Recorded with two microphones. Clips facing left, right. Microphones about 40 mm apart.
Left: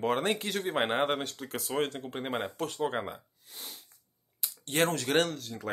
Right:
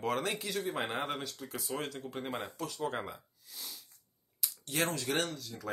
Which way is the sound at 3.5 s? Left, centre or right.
Left.